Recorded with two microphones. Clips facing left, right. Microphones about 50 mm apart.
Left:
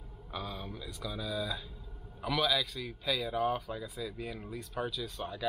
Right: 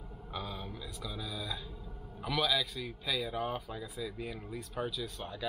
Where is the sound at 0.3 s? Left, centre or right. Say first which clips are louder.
Left 1 dB; centre.